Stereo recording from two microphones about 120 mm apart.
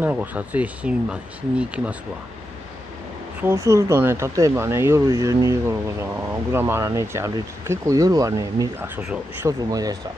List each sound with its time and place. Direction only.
0.0 s speech: 15° right (ahead or behind)
3.3 s speech: 20° right (ahead or behind)
8.8 s speech: 10° right (ahead or behind)
9.5 s speech: 30° right (ahead or behind)